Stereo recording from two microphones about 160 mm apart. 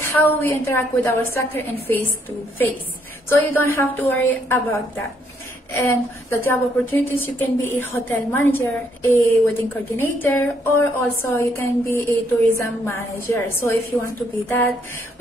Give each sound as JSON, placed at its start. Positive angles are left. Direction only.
{"t": 0.0, "sound": "a woman's voice", "side_deg": 15}
{"t": 3.3, "sound": "a woman's voice", "side_deg": 15}
{"t": 5.7, "sound": "a woman's voice", "side_deg": 15}